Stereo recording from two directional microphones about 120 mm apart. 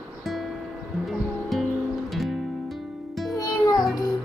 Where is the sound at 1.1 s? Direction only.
Centre (ahead or behind).